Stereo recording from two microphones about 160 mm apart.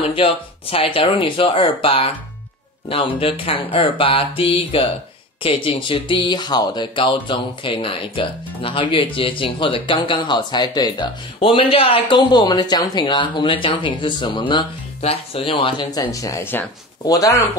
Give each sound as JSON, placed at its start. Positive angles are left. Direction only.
{"t": 0.1, "sound": "speech", "side_deg": 35}